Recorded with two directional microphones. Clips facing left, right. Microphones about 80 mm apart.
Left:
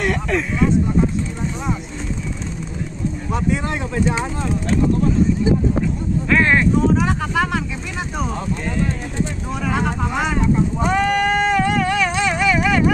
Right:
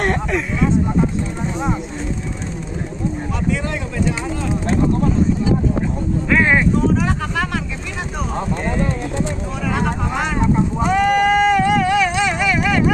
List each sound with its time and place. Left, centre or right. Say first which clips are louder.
3.3 s speech: left 4 dB; left
6.3 s speech: even; centre
7.0 s speech: left 1 dB; centre
9.7 s speech: right 1 dB; centre
10.8 s a sound: right 2 dB; centre